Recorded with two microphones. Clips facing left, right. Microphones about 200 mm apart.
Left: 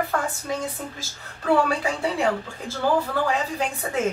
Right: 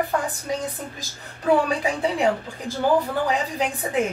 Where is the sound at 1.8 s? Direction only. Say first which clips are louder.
Right 2 dB; 15° right (ahead or behind).